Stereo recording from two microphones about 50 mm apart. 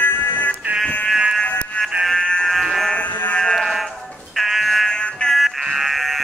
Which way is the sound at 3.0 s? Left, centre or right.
Left.